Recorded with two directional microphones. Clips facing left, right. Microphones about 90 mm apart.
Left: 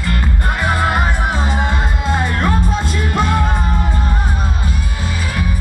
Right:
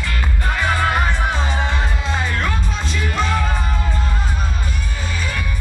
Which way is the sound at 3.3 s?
20° left (ahead or behind).